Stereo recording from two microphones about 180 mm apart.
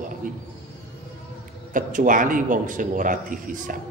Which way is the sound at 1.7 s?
50° right (ahead or behind).